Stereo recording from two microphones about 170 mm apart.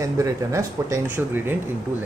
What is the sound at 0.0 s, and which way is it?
Speech, 15° right (ahead or behind).